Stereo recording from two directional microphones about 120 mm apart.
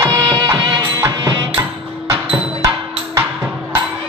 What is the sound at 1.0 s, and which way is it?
Music, 25° right (ahead or behind).